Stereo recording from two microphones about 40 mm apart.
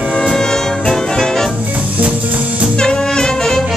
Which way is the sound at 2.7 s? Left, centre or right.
Centre.